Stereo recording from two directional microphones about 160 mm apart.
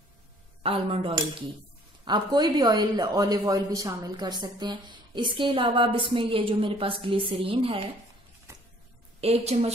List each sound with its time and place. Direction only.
0.6 s speech: 40° right (ahead or behind)
8.5 s vehicle: 15° right (ahead or behind)
9.2 s a woman's voice: 40° right (ahead or behind)